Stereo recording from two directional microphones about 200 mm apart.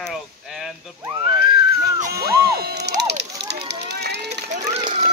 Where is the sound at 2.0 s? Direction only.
50° right (ahead or behind).